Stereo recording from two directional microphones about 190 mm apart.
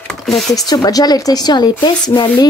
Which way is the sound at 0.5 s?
20° left (ahead or behind).